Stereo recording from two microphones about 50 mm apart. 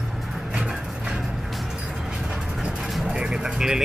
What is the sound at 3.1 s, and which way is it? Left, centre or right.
Music, centre.